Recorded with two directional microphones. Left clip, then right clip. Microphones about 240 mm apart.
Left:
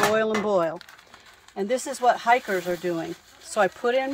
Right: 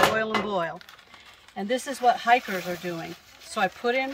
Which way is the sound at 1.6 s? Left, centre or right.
Centre.